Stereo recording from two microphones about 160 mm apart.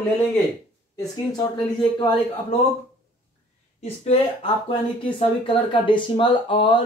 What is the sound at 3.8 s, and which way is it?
Speech, 40° left (ahead or behind).